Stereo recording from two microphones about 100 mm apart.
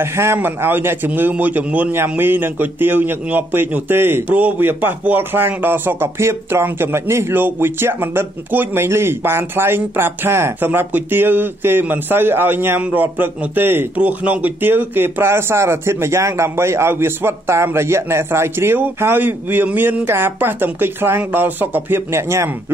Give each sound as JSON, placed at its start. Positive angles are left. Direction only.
{"t": 0.0, "sound": "a man's voice", "side_deg": -25}